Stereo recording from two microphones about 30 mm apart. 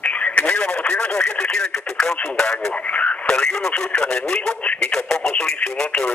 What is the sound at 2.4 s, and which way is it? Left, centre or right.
Speech, left.